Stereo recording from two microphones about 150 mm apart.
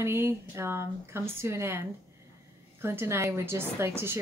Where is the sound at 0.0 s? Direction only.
15° right (ahead or behind).